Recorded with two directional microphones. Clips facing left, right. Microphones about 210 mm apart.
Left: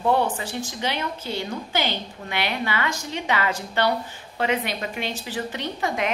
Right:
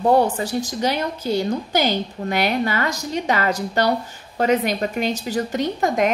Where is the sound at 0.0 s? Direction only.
40° right (ahead or behind).